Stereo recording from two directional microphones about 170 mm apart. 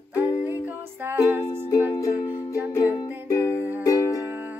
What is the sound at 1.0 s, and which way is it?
Music, 15° right (ahead or behind).